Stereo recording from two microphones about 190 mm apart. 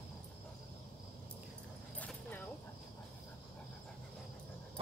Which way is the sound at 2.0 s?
10° left (ahead or behind).